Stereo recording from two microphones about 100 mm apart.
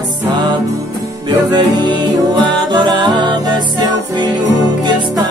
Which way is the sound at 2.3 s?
45° right (ahead or behind).